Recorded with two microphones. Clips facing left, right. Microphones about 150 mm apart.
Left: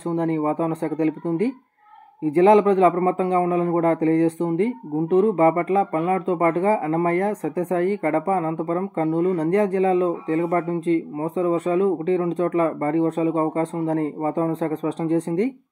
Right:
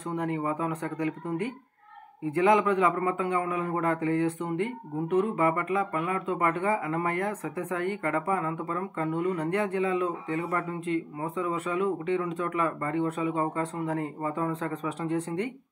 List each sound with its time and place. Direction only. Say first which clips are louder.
0.1 s a man's voice: left 8 dB; 30° left (ahead or behind)